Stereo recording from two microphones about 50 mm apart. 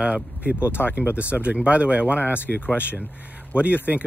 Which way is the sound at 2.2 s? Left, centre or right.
Left.